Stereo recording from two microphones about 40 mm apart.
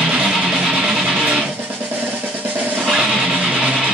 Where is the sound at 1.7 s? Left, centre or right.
Right.